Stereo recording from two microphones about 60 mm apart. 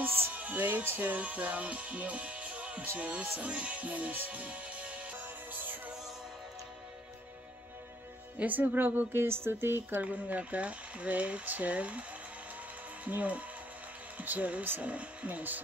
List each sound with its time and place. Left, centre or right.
0.0 s music: right
0.3 s music: right
8.4 s speech: right
10.0 s speech: right
13.0 s speech: right